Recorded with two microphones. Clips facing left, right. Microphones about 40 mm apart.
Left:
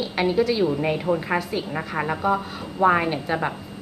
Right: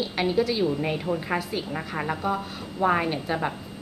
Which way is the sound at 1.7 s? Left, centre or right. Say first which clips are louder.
Left 4 dB; centre.